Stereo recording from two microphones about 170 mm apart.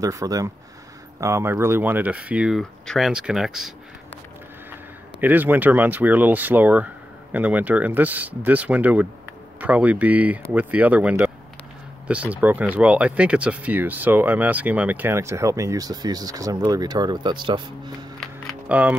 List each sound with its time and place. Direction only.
0.0 s speech: 20° right (ahead or behind); by 3.7 s centre (ahead or behind)
5.2 s speech: 10° right (ahead or behind); by 17.6 s 25° right (ahead or behind)
18.2 s music: 5° right (ahead or behind)